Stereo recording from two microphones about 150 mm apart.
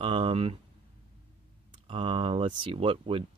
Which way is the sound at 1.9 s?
35° right (ahead or behind).